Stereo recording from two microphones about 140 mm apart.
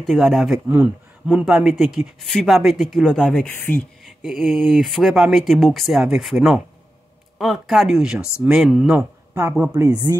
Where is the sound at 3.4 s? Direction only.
15° left (ahead or behind).